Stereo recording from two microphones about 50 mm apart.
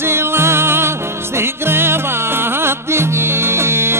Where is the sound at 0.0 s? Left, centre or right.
Right.